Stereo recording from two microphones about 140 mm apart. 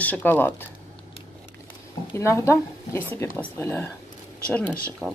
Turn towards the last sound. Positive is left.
turn(degrees=5)  # may be behind; listen again after turning